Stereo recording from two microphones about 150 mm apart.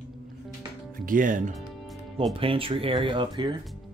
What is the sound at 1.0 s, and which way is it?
Speech, 60° right (ahead or behind).